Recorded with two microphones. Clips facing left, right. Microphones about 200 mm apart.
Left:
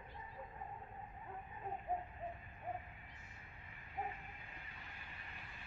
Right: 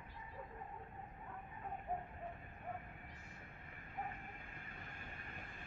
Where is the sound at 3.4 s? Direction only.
50° right (ahead or behind).